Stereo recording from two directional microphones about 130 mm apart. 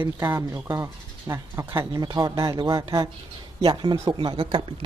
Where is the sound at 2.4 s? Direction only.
40° right (ahead or behind).